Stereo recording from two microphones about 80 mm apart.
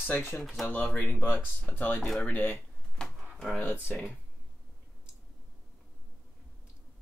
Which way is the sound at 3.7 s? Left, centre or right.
Centre.